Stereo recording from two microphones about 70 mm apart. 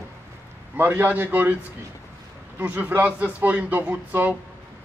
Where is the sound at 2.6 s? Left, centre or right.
Right.